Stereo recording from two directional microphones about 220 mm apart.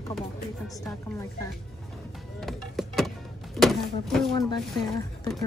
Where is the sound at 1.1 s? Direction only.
15° left (ahead or behind).